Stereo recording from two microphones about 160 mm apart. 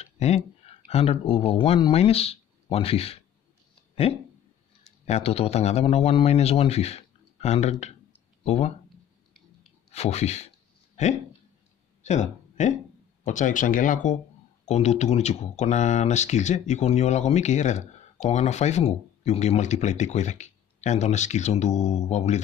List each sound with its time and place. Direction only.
0.0 s speech: 40° left (ahead or behind)
5.0 s a man's voice: 40° left (ahead or behind)
9.8 s a man's voice: 40° left (ahead or behind)
12.0 s a sound: 45° left (ahead or behind)
13.2 s speech: 50° left (ahead or behind)